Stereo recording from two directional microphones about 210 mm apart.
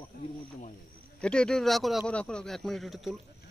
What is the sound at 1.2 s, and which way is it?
Speech, 5° left (ahead or behind).